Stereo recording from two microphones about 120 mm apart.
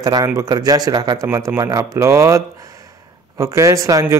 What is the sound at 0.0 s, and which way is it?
A man's voice, 30° right (ahead or behind).